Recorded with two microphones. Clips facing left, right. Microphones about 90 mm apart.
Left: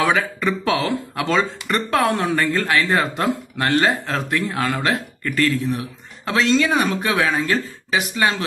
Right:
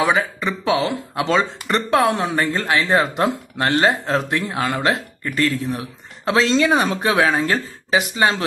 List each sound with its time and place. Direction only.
0.0 s speech: 15° right (ahead or behind)